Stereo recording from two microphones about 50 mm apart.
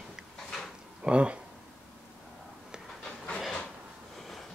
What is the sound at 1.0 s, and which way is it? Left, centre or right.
Speech, right.